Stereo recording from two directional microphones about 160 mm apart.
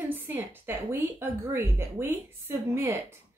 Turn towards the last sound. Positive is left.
turn(degrees=-15)  # may be behind; listen again after turning